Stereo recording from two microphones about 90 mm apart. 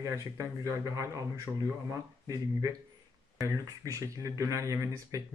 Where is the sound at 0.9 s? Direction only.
35° right (ahead or behind).